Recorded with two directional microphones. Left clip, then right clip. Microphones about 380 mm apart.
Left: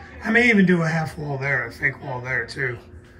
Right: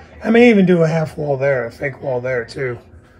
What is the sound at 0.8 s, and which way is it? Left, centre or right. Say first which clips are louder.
Speech: right 8 dB; centre.